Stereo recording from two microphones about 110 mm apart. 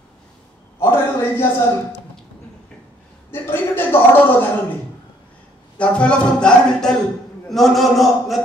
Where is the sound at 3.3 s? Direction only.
20° left (ahead or behind).